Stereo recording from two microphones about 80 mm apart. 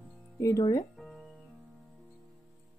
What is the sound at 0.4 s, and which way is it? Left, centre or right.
Speech, left.